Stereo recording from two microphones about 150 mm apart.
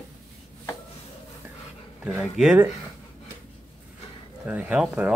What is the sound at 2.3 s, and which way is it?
Speech, 5° right (ahead or behind).